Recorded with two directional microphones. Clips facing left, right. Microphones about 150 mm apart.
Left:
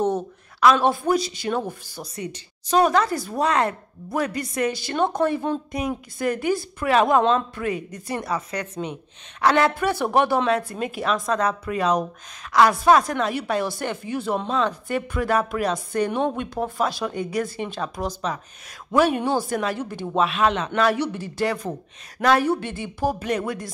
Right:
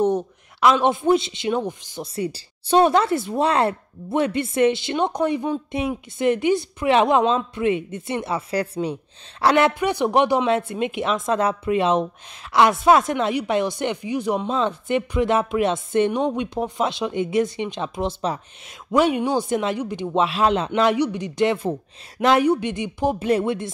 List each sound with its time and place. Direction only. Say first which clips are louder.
0.6 s a man's voice: even; 20° right (ahead or behind)
18.9 s speech: right 1 dB; 15° right (ahead or behind)
20.2 s a man's voice: right 1 dB; 30° right (ahead or behind)